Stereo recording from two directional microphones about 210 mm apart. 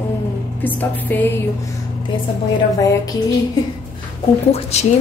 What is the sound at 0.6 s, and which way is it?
Speech, 10° left (ahead or behind).